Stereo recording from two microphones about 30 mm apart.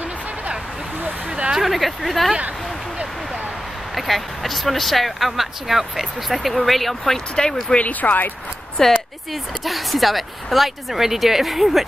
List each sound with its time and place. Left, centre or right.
1.6 s speech: centre
3.9 s speech: centre
7.4 s speech: centre
7.7 s speech: left
8.8 s speech: centre
9.3 s speech: centre